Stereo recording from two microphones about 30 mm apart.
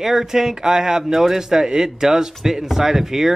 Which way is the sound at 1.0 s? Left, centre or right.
Centre.